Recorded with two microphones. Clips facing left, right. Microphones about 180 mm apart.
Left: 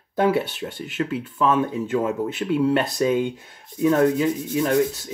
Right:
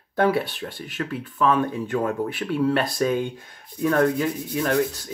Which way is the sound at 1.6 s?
20° left (ahead or behind).